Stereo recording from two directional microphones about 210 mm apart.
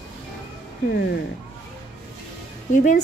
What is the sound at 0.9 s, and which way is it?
Speech, 50° left (ahead or behind).